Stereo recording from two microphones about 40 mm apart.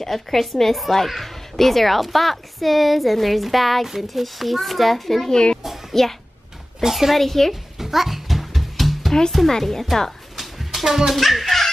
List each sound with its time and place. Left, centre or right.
0.0 s a woman's voice: centre
5.3 s a child's voice: left
5.6 s child singing: centre
6.8 s a woman's voice: centre
7.8 s music: centre
9.5 s speech: centre
10.3 s a sound: centre